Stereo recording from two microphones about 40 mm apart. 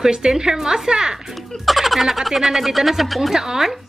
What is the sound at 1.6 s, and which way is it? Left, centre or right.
Speech, centre.